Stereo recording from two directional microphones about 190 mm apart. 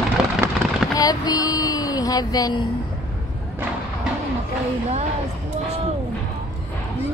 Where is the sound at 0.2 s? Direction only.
5° right (ahead or behind).